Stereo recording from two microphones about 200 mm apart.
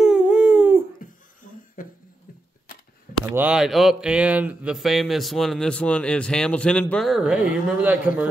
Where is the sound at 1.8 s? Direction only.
45° left (ahead or behind).